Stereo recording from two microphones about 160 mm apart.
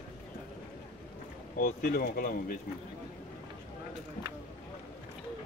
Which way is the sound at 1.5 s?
60° left (ahead or behind).